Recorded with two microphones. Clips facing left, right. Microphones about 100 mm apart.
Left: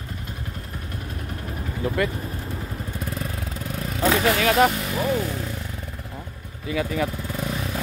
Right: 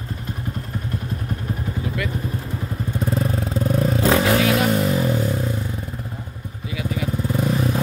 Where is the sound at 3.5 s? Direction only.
35° right (ahead or behind).